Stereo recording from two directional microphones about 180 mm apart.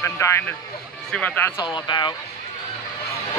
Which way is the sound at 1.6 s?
25° left (ahead or behind).